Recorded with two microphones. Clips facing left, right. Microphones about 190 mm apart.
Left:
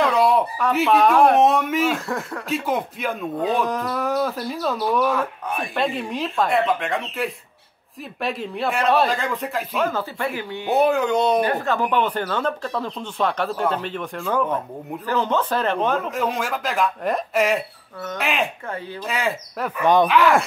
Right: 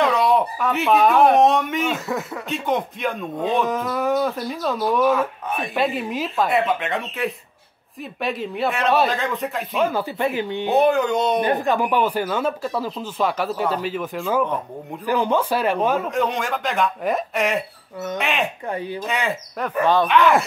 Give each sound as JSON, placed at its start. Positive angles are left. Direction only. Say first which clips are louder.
{"t": 0.0, "sound": "speech", "louder": "even", "side_deg": 0}
{"t": 9.8, "sound": "speech", "louder": "right 3 dB", "side_deg": -15}
{"t": 10.8, "sound": "speech", "louder": "even", "side_deg": 0}
{"t": 11.4, "sound": "speech", "louder": "right 2 dB", "side_deg": -15}
{"t": 18.7, "sound": "speech", "louder": "right 4 dB", "side_deg": -15}
{"t": 19.0, "sound": "speech", "louder": "left 3 dB", "side_deg": 0}